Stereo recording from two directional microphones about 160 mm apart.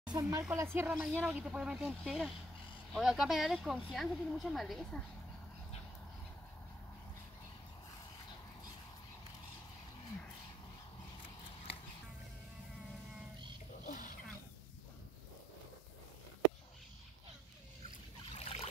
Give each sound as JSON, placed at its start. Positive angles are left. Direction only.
{"t": 0.1, "sound": "speech", "side_deg": -15}
{"t": 13.8, "sound": "a sound", "side_deg": 55}
{"t": 18.3, "sound": "boat", "side_deg": 40}